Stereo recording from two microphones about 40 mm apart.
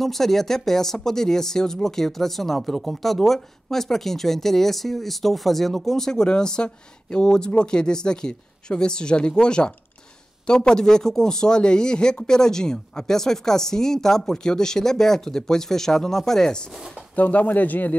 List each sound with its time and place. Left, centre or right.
0.0 s speech: centre
17.1 s speech: left